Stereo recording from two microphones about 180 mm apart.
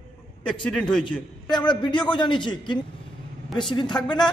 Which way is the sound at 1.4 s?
25° left (ahead or behind).